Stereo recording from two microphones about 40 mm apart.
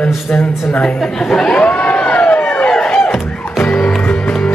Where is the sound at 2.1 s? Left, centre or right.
Left.